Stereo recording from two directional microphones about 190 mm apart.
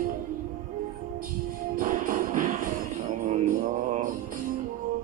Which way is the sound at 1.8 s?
45° right (ahead or behind).